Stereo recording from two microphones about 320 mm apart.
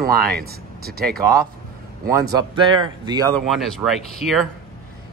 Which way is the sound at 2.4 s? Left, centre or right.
Centre.